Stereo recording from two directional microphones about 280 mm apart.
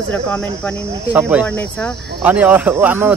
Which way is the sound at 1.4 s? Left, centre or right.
Centre.